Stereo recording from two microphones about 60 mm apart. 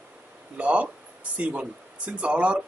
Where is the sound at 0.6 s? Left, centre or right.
Right.